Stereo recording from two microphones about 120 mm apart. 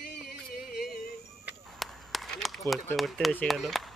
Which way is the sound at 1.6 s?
5° left (ahead or behind).